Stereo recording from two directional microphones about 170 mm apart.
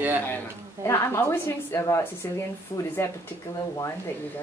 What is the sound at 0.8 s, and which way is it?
Speech, 15° left (ahead or behind).